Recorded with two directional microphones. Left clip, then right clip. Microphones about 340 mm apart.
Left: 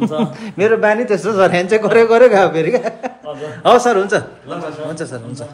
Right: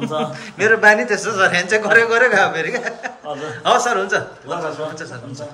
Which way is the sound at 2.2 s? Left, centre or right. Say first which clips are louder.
Left 5 dB; centre.